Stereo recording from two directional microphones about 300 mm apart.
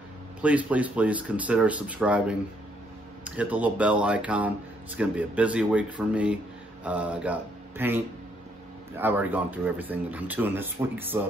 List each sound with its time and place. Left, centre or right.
0.4 s speech: centre